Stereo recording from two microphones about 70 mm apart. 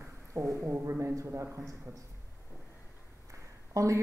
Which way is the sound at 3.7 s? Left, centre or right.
Right.